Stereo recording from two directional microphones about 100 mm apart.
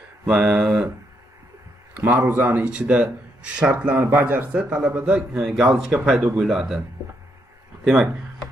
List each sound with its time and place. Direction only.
0.3 s speech: 5° right (ahead or behind)
2.0 s speech: 20° right (ahead or behind)
7.8 s speech: centre (ahead or behind)